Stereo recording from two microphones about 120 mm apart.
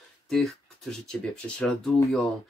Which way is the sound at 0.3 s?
Centre (ahead or behind).